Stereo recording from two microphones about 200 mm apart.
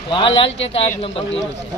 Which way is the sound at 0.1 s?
25° left (ahead or behind).